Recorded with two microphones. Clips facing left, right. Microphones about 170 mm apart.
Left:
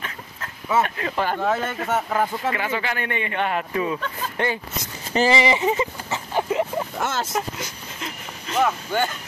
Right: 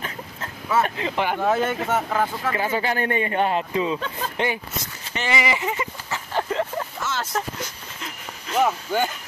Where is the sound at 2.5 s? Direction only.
30° right (ahead or behind).